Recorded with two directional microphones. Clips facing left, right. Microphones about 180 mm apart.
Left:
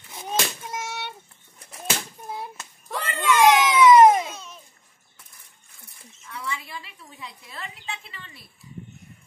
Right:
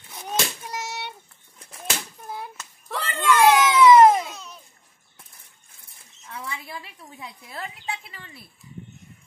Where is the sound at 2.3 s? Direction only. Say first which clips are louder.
Left 1 dB; 25° left (ahead or behind).